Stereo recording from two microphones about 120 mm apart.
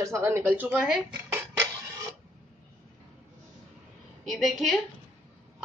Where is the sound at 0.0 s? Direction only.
25° right (ahead or behind).